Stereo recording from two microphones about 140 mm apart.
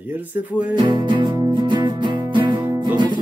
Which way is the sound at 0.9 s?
35° right (ahead or behind).